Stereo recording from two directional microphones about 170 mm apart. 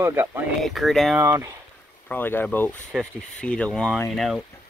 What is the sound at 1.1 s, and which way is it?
Speech, 15° right (ahead or behind).